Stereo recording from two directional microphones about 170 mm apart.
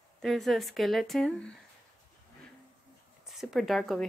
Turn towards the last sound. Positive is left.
turn(degrees=0)  # may be behind; listen again after turning